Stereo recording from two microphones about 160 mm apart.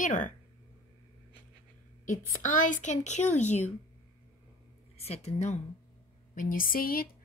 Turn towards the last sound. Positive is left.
turn(degrees=65)  # may be behind; listen again after turning